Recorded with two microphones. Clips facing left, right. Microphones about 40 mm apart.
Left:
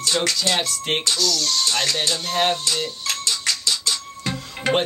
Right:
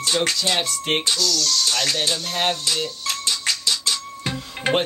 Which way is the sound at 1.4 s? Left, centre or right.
Left.